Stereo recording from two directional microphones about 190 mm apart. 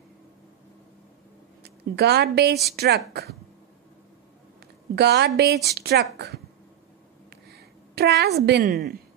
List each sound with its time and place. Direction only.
1.6 s a woman's voice: 60° right (ahead or behind)
4.9 s a woman's voice: 60° right (ahead or behind)
7.2 s a sound: 55° right (ahead or behind)